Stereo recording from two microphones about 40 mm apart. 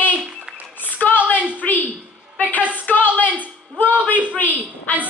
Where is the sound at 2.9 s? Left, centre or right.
Left.